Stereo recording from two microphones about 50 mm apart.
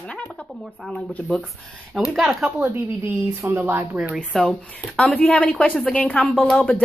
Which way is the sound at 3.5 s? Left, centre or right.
Right.